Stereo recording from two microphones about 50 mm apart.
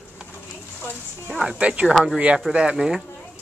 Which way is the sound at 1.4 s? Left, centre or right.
Right.